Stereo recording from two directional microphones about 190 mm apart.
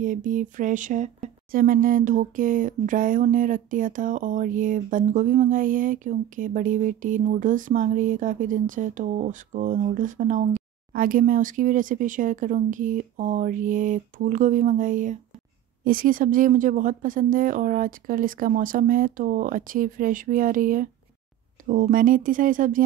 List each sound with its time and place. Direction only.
0.0 s speech: 45° right (ahead or behind)